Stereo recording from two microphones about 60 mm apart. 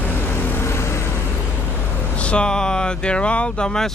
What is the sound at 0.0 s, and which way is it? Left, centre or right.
Vehicle, left.